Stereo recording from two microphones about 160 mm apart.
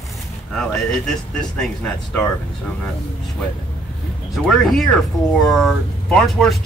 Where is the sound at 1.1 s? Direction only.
5° left (ahead or behind).